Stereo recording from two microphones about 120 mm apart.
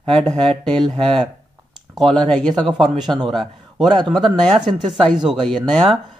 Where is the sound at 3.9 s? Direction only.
40° right (ahead or behind).